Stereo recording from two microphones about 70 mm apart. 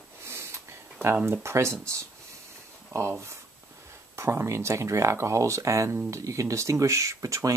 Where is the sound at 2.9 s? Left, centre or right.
Right.